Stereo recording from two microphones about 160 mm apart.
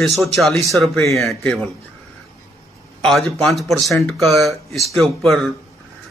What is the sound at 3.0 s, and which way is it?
A man's voice, centre (ahead or behind).